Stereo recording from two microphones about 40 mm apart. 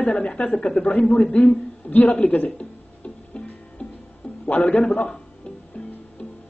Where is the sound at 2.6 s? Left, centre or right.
Left.